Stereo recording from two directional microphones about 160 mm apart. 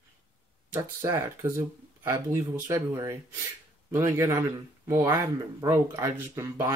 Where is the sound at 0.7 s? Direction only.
15° right (ahead or behind).